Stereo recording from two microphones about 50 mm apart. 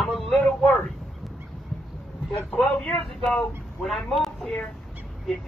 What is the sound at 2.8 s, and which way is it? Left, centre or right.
Speech, centre.